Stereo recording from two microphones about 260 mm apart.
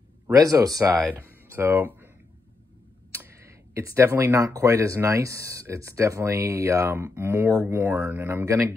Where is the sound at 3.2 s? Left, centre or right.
Centre.